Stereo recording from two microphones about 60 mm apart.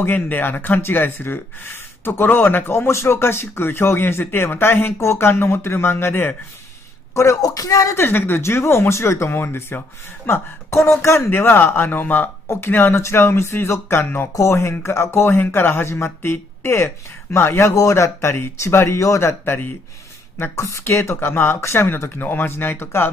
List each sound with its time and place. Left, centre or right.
0.0 s speech: left
7.4 s speech: left
7.9 s speech: left
12.4 s speech: left
15.3 s speech: left
20.8 s speech: left